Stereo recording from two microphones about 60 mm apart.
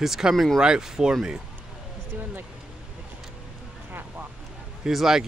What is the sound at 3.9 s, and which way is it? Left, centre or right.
Vehicle, right.